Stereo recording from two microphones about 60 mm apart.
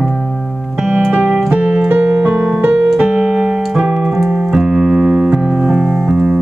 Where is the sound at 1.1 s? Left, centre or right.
Right.